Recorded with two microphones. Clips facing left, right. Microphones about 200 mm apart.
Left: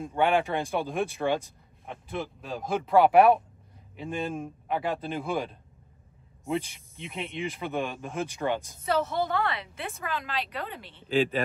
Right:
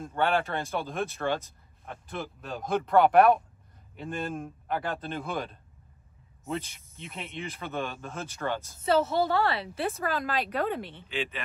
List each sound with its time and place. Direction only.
0.1 s speech: 15° left (ahead or behind)
1.9 s speech: centre (ahead or behind)
7.0 s speech: centre (ahead or behind)
7.4 s speech: 15° left (ahead or behind)
8.8 s a woman's voice: 25° right (ahead or behind); by 11.0 s 50° right (ahead or behind)
11.1 s speech: 35° left (ahead or behind)